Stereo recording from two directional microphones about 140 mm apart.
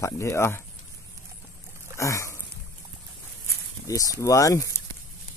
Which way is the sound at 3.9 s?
25° left (ahead or behind).